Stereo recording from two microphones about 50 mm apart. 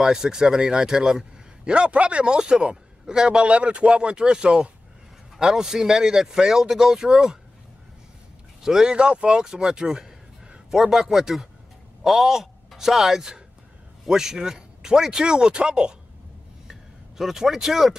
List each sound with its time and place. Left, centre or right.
0.0 s a man's voice: centre
8.6 s a man's voice: centre
17.2 s a man's voice: centre